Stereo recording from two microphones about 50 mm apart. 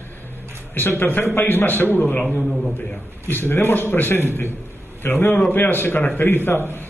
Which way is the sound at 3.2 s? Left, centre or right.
Left.